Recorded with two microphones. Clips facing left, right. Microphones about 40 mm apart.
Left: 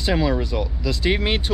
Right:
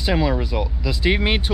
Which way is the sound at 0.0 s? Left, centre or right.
Centre.